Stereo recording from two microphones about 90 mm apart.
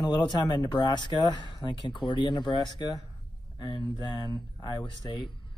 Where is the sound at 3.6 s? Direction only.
65° left (ahead or behind).